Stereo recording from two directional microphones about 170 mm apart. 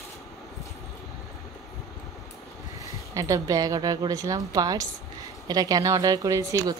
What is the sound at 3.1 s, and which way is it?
A woman's voice, 20° right (ahead or behind).